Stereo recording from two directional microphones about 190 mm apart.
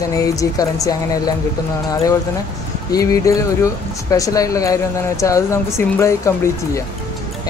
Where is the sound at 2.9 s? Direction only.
20° left (ahead or behind).